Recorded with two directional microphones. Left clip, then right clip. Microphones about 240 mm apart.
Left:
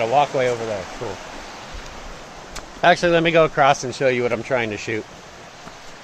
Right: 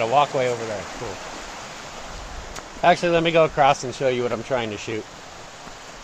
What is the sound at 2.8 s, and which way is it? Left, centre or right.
Speech, centre.